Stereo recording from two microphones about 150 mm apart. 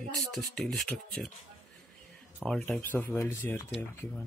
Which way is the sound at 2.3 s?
5° left (ahead or behind).